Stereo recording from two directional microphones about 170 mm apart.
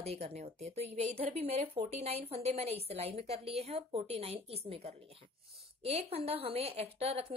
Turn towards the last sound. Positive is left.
turn(degrees=-35)  # may be behind; listen again after turning